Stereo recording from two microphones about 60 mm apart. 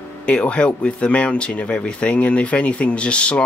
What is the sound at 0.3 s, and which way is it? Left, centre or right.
Speech, centre.